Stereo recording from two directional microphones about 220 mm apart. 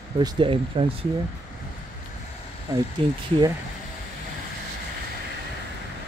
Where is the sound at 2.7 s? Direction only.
15° right (ahead or behind).